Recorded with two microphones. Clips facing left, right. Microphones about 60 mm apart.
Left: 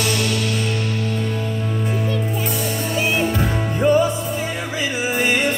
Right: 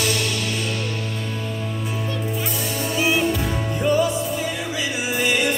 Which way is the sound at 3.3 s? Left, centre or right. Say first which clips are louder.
Left 3 dB; left.